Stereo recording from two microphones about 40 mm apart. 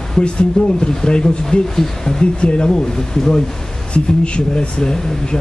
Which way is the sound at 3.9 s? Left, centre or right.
Left.